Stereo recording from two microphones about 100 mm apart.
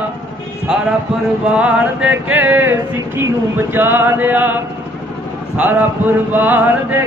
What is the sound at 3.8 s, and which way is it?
Chant, 20° right (ahead or behind).